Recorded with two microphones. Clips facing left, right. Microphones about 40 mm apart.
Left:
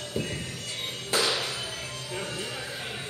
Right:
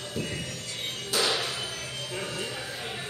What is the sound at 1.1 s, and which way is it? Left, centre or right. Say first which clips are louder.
Music: left 1 dB; left.